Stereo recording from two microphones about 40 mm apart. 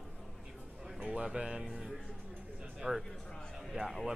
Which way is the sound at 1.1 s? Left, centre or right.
Right.